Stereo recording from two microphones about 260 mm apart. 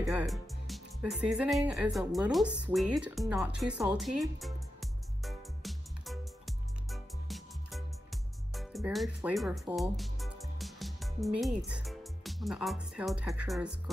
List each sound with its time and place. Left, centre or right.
0.1 s speech: centre
1.7 s music: centre